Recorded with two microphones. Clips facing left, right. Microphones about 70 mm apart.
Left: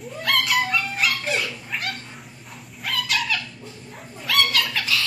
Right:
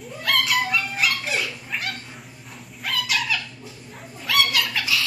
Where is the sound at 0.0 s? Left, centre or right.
Centre.